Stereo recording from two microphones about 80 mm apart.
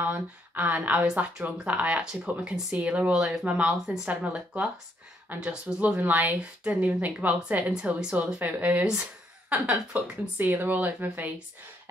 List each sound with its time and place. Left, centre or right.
0.0 s speech: right